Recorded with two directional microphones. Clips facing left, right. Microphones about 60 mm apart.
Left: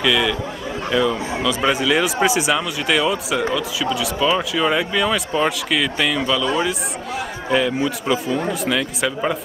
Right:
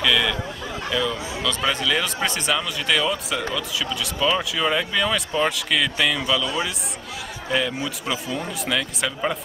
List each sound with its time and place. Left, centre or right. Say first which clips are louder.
0.0 s speech: left 3 dB; centre
0.8 s speech: left 6 dB; centre
7.5 s speech: left 5 dB; centre